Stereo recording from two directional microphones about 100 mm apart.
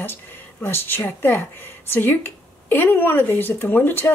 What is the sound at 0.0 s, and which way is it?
Speech, 20° left (ahead or behind).